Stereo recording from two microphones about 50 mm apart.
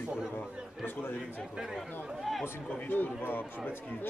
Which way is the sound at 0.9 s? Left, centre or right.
Left.